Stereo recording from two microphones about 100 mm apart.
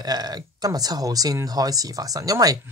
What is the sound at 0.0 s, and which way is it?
Speech, 40° right (ahead or behind).